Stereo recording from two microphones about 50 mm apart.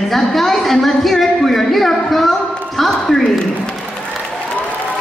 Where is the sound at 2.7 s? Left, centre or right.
Centre.